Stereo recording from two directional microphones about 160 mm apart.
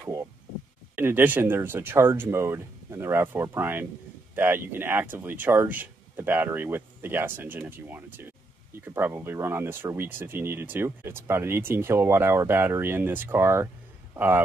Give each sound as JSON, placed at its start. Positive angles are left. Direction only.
{"t": 0.0, "sound": "speech", "side_deg": -20}